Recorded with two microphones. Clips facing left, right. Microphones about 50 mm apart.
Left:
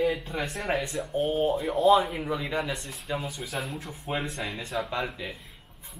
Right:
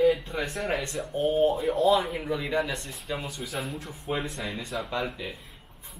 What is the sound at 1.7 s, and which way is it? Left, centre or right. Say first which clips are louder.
Speech: left 5 dB; centre.